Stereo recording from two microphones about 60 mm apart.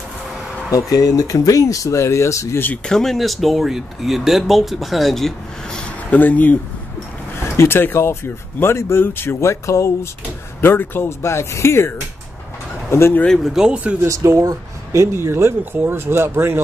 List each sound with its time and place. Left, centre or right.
0.7 s speech: left
2.8 s speech: centre
6.0 s speech: left
7.3 s speech: left
10.6 s speech: left
11.1 s speech: left
13.4 s speech: centre
14.0 s speech: right
15.1 s speech: right